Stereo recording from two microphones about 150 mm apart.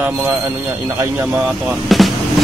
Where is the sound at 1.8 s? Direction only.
Centre (ahead or behind).